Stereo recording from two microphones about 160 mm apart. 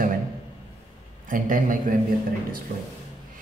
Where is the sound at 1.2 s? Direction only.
55° right (ahead or behind).